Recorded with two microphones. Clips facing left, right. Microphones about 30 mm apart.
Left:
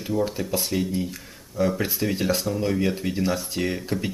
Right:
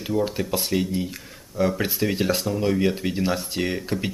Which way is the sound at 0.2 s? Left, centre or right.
Right.